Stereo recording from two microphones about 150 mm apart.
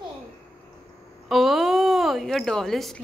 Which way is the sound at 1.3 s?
Centre (ahead or behind).